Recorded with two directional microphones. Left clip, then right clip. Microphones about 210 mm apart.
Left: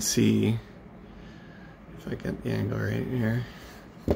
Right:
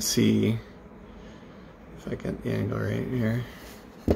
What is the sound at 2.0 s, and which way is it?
Speech, 5° left (ahead or behind).